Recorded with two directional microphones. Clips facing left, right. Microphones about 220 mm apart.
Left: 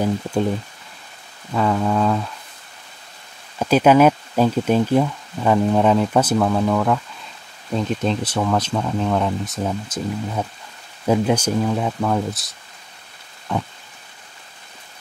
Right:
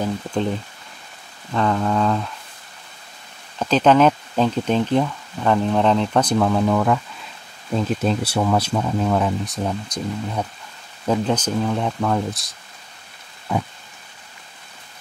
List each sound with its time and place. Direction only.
0.0 s speech: 10° left (ahead or behind)
1.5 s speech: 5° left (ahead or behind)
3.5 s speech: 10° left (ahead or behind)
13.5 s a sound: 10° right (ahead or behind)